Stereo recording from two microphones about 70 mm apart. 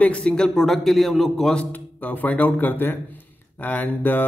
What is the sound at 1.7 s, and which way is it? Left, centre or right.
A man's voice, left.